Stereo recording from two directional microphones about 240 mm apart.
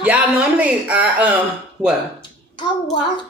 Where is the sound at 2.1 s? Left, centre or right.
Centre.